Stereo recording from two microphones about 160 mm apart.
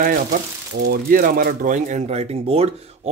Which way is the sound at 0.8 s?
60° right (ahead or behind).